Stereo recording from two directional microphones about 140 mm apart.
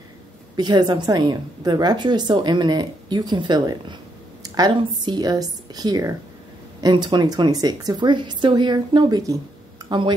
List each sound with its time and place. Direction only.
0.6 s a woman's voice: 30° right (ahead or behind)